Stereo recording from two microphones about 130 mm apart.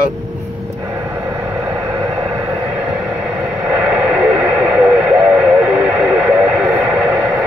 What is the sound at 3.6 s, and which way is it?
Radio, 5° right (ahead or behind).